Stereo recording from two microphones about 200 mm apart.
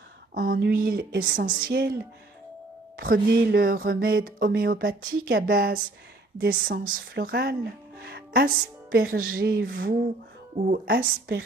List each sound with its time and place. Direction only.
0.3 s speech: 45° right (ahead or behind)
3.0 s speech: 50° right (ahead or behind)